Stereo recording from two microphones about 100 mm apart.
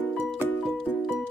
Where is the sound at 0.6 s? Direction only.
5° right (ahead or behind).